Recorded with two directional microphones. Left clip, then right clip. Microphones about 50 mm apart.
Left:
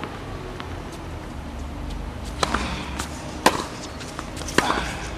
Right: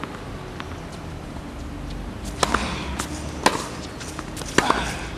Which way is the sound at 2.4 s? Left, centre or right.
Right.